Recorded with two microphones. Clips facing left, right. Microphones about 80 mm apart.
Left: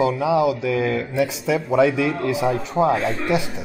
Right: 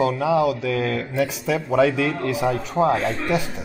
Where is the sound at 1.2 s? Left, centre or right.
Right.